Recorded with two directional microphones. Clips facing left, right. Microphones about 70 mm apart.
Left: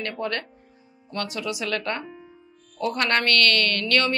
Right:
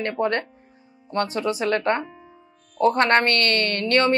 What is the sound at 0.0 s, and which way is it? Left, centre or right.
A woman's voice, right.